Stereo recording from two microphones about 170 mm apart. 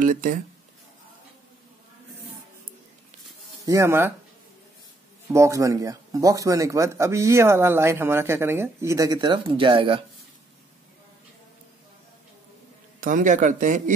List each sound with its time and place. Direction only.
0.0 s speech: 55° right (ahead or behind)
3.6 s speech: 15° right (ahead or behind)
5.3 s speech: 20° right (ahead or behind)
13.0 s speech: 50° right (ahead or behind)